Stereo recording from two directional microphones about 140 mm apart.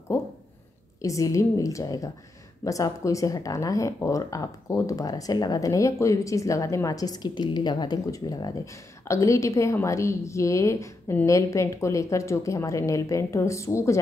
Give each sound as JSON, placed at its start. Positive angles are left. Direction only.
{"t": 1.0, "sound": "speech", "side_deg": 20}